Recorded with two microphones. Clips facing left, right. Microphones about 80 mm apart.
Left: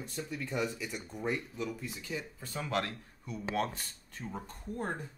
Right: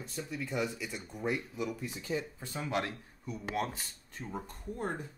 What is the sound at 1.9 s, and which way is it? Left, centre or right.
Speech, right.